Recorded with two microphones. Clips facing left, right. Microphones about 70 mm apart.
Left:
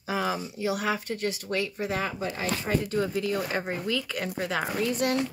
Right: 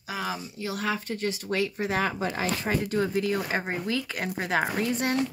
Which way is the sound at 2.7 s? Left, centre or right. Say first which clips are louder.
Even; centre.